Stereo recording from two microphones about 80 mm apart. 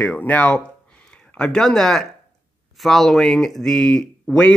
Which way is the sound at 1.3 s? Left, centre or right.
Centre.